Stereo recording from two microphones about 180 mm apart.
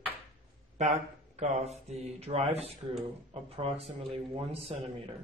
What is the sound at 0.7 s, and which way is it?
Speech, 40° right (ahead or behind).